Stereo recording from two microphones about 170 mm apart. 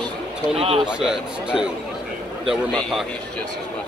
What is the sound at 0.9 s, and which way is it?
Speech, 5° right (ahead or behind).